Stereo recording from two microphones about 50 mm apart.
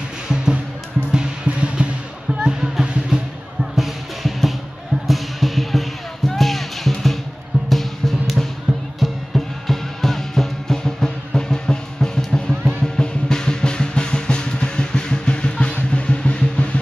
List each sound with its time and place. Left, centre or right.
1.1 s music: centre
3.7 s music: centre; by 16.6 s left